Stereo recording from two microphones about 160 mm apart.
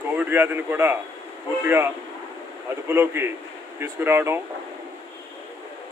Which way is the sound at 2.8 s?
15° right (ahead or behind).